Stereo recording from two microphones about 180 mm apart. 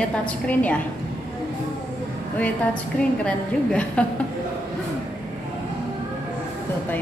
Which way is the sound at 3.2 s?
5° left (ahead or behind).